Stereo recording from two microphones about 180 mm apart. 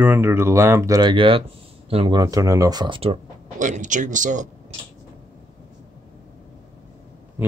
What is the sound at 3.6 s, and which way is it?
Speech, 45° right (ahead or behind).